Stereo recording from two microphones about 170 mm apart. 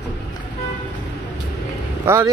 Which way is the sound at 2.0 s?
15° right (ahead or behind).